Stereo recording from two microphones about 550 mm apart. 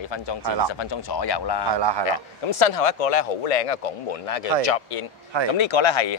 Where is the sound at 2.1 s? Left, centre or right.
Left.